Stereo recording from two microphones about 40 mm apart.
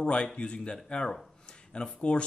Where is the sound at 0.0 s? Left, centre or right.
Left.